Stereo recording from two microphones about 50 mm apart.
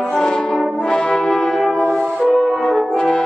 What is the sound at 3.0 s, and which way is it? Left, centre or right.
French horn, centre.